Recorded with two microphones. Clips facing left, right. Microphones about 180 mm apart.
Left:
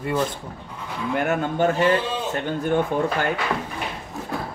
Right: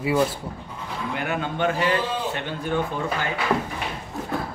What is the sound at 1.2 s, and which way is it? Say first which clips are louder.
Speech: left 5 dB; 45° left (ahead or behind).